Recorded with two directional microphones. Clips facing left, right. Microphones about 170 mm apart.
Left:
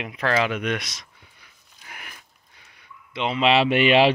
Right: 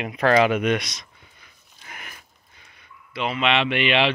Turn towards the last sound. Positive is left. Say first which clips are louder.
# left 4 dB
turn(degrees=40)  # may be behind; listen again after turning